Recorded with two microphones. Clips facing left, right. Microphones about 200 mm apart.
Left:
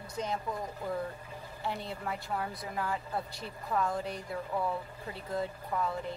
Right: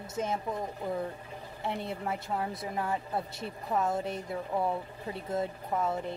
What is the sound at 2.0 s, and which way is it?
Speech, 25° right (ahead or behind).